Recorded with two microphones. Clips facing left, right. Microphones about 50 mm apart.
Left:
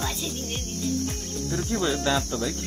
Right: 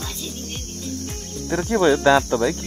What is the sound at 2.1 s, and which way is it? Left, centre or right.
Speech, right.